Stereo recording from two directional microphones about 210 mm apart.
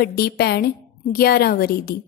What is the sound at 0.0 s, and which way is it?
A woman's voice, 50° left (ahead or behind).